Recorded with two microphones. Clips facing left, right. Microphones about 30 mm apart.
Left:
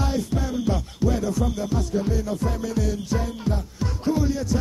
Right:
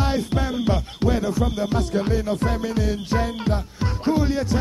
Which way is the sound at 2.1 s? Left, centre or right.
Right.